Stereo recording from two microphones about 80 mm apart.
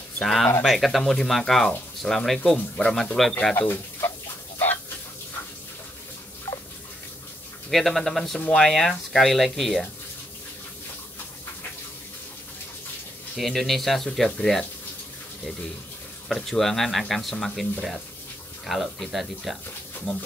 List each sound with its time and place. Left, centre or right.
0.2 s speech: centre
3.5 s speech: left
4.6 s chicken: left
7.7 s speech: centre
13.4 s speech: centre
16.3 s speech: centre